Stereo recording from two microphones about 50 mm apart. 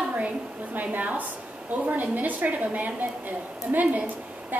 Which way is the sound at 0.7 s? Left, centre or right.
Right.